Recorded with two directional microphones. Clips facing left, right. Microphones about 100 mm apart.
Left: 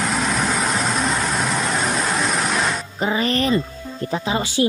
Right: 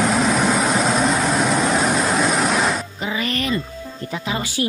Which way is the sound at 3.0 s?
35° left (ahead or behind).